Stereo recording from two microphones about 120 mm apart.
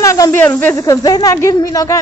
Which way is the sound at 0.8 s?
30° left (ahead or behind).